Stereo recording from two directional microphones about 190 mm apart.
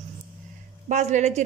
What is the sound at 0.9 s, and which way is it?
Speech, 40° right (ahead or behind).